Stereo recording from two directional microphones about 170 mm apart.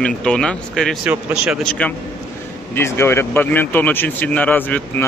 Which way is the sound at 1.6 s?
10° left (ahead or behind).